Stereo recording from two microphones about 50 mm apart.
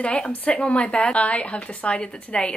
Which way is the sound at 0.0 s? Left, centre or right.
Left.